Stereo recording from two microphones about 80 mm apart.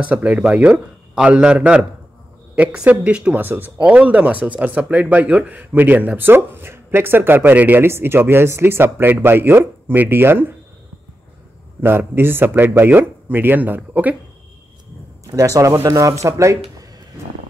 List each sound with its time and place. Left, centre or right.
0.0 s a man's voice: centre
11.8 s speech: right
15.3 s speech: right